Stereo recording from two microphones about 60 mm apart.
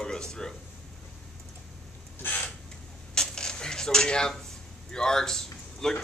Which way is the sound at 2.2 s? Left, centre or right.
Left.